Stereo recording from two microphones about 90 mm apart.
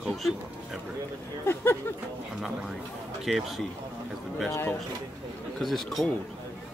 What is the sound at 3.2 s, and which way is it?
Speech, centre (ahead or behind).